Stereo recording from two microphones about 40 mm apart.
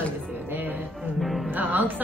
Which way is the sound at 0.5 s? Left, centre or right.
Right.